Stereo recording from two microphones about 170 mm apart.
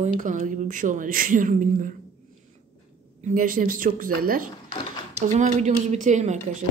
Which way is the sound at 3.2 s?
50° right (ahead or behind).